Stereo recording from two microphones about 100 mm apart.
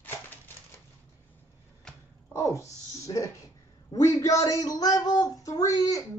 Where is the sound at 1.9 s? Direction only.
5° left (ahead or behind).